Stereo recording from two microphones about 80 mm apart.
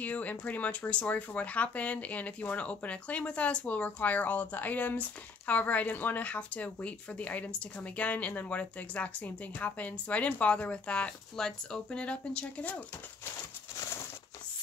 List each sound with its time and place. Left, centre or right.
0.0 s speech: centre